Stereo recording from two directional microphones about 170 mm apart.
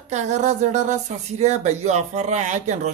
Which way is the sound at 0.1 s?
45° right (ahead or behind).